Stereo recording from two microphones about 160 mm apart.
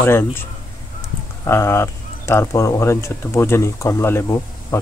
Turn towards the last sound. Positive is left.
turn(degrees=15)  # may be behind; listen again after turning